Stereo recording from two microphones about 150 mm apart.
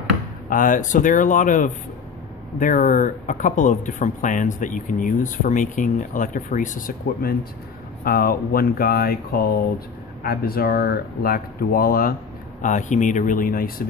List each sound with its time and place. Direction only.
0.5 s speech: 60° left (ahead or behind); by 12.2 s 75° left (ahead or behind)
12.6 s speech: 55° left (ahead or behind); by 13.8 s 75° left (ahead or behind)